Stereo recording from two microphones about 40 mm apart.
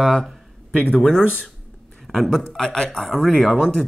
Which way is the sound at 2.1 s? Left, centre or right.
Centre.